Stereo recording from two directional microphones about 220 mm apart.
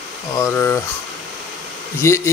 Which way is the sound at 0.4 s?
10° left (ahead or behind).